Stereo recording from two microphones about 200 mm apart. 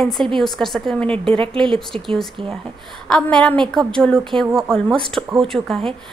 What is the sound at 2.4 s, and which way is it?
Speech, 25° right (ahead or behind).